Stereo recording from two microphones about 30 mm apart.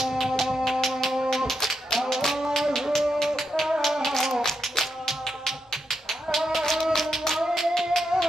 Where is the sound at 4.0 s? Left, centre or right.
Centre.